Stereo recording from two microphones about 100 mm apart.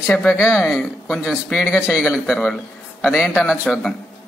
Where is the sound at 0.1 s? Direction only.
10° left (ahead or behind).